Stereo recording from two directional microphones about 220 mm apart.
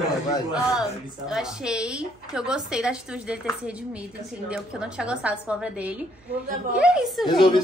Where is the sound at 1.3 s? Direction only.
5° right (ahead or behind).